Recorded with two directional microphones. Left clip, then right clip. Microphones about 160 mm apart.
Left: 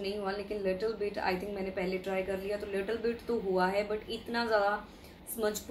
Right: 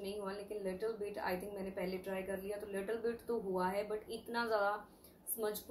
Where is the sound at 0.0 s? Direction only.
5° left (ahead or behind).